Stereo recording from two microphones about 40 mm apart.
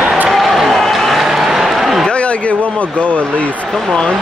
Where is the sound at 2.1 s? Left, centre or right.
Left.